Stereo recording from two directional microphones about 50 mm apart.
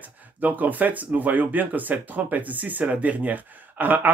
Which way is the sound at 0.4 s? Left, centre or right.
Right.